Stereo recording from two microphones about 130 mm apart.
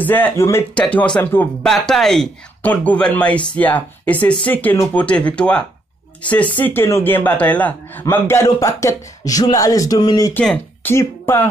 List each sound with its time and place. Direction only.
0.0 s speech: 15° left (ahead or behind); by 10.3 s 30° left (ahead or behind)
10.4 s speech: 5° left (ahead or behind)
10.9 s speech: 20° left (ahead or behind)